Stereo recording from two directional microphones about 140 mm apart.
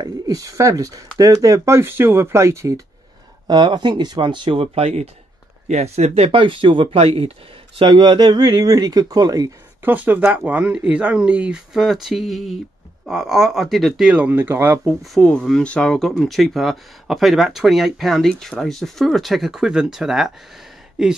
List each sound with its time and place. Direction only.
0.0 s speech: 25° right (ahead or behind)
3.4 s speech: 30° right (ahead or behind)
7.8 s speech: 35° right (ahead or behind)
9.8 s speech: 10° right (ahead or behind)
15.1 s speech: 5° left (ahead or behind)